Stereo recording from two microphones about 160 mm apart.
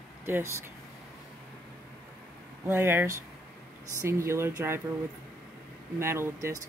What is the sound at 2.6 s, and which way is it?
Speech, 15° right (ahead or behind).